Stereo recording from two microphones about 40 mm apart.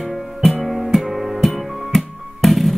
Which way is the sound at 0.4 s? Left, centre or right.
Centre.